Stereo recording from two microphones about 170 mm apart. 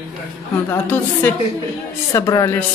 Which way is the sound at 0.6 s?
15° left (ahead or behind).